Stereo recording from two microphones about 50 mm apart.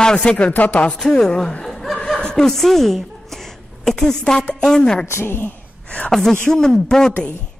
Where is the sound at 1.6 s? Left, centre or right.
Centre.